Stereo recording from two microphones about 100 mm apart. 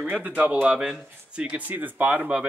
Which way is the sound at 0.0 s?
15° right (ahead or behind).